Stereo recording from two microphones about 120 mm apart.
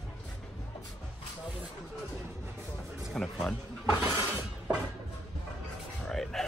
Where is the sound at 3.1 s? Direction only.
5° left (ahead or behind).